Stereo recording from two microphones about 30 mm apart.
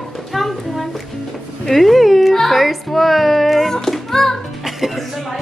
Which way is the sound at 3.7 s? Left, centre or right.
Centre.